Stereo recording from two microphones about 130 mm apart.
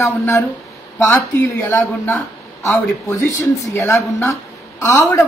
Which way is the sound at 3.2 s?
25° left (ahead or behind).